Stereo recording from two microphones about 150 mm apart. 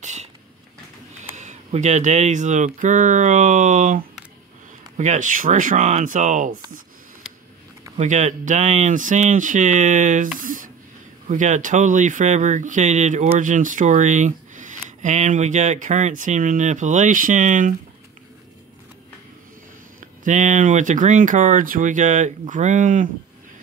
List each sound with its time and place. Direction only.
0.0 s a sound: 50° right (ahead or behind)
1.3 s speech: 50° right (ahead or behind)
8.0 s speech: 50° right (ahead or behind)
11.2 s speech: 55° right (ahead or behind)
20.0 s speech: 60° right (ahead or behind)